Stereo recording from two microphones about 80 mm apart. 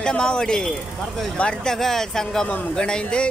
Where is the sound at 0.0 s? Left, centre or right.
Centre.